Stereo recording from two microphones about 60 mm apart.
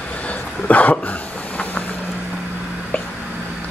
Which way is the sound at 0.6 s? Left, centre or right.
Left.